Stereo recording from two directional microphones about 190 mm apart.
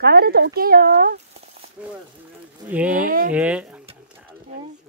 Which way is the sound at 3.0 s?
45° right (ahead or behind).